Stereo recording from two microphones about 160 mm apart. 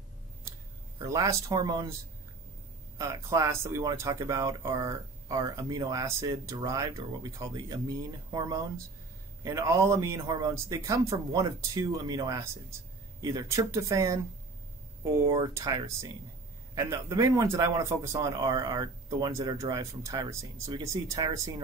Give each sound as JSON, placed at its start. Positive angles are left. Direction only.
{"t": 0.9, "sound": "speech", "side_deg": -20}
{"t": 3.0, "sound": "speech", "side_deg": -20}